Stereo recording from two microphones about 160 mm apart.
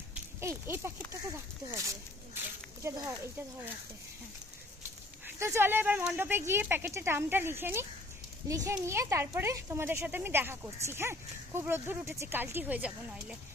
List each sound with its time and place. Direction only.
0.1 s speech: 15° right (ahead or behind)
5.2 s a child's voice: 15° right (ahead or behind)